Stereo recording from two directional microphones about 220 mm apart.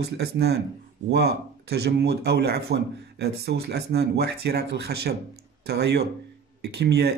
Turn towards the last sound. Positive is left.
turn(degrees=-50)  # may be behind; listen again after turning